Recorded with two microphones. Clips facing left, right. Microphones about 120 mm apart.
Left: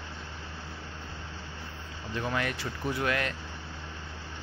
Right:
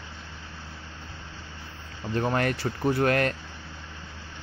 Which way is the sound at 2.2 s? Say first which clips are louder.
Right 6 dB; 45° right (ahead or behind).